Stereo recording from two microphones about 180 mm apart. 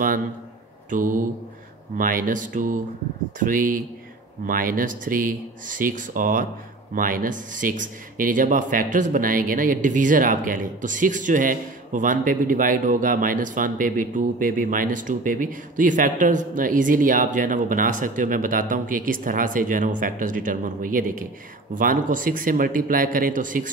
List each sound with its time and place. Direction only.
0.8 s speech: 50° right (ahead or behind)